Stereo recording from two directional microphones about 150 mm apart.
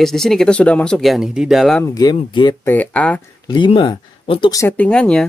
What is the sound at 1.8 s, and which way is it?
Speech, 25° left (ahead or behind).